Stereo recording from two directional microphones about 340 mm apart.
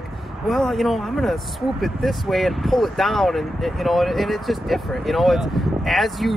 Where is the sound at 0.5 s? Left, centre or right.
Centre.